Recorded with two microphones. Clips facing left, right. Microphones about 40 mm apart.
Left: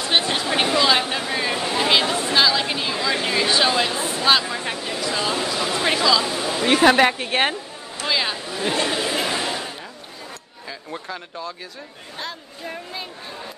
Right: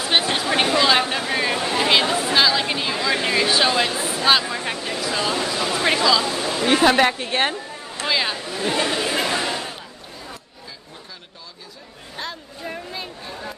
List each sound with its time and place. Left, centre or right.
0.0 s a sound: centre
4.2 s speech: centre
6.2 s speech: centre
8.1 s speech: centre
8.5 s speech: centre
9.3 s a sound: centre
10.9 s speech: left
12.2 s speech: centre